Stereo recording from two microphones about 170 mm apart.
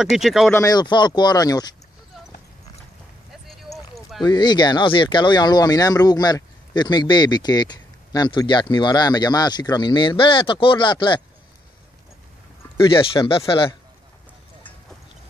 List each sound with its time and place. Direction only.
0.0 s speech: centre (ahead or behind)
0.5 s speech: 20° left (ahead or behind)
3.4 s a sound: centre (ahead or behind)
4.2 s speech: 25° left (ahead or behind)
12.9 s speech: 30° left (ahead or behind)